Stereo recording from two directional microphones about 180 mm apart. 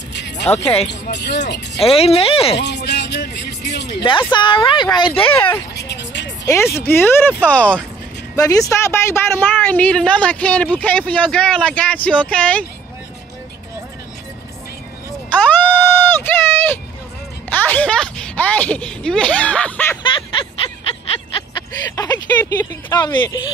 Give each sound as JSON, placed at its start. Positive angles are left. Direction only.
{"t": 0.1, "sound": "music", "side_deg": 70}
{"t": 0.8, "sound": "speech", "side_deg": 70}
{"t": 1.8, "sound": "speech", "side_deg": 35}
{"t": 2.6, "sound": "speech", "side_deg": 70}
{"t": 4.3, "sound": "speech", "side_deg": 25}
{"t": 5.3, "sound": "a woman's voice", "side_deg": 10}
{"t": 5.8, "sound": "vehicle", "side_deg": 75}
{"t": 6.4, "sound": "a woman's voice", "side_deg": 15}
{"t": 8.4, "sound": "a woman's voice", "side_deg": 20}
{"t": 15.3, "sound": "a sound", "side_deg": 10}
{"t": 17.5, "sound": "speech", "side_deg": 10}
{"t": 20.0, "sound": "a sound", "side_deg": 30}
{"t": 21.9, "sound": "a woman's voice", "side_deg": 20}